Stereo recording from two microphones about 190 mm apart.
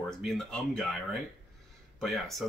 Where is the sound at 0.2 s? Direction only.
Centre (ahead or behind).